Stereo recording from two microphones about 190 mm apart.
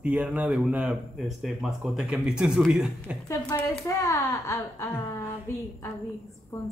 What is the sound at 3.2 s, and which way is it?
Speech, 10° left (ahead or behind).